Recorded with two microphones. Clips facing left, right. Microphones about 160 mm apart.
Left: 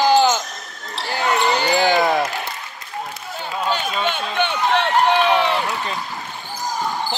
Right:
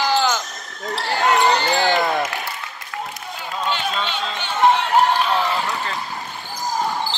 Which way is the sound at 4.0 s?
55° left (ahead or behind).